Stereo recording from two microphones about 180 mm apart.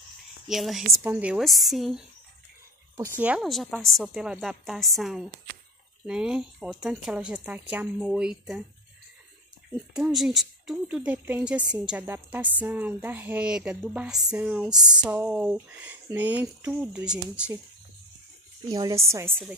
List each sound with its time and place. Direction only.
0.5 s speech: centre (ahead or behind)
3.2 s speech: 5° right (ahead or behind)
9.9 s speech: centre (ahead or behind)
18.7 s speech: 20° right (ahead or behind)